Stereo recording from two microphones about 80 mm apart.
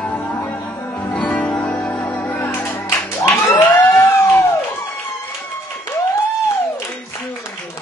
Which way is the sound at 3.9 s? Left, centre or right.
Left.